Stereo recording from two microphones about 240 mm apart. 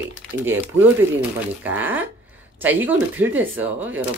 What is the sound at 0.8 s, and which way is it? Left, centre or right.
Speech, centre.